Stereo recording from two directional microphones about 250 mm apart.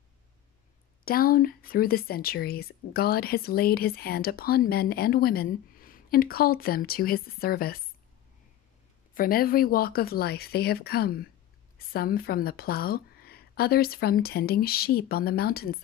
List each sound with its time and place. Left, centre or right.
1.0 s speech: left
9.1 s speech: left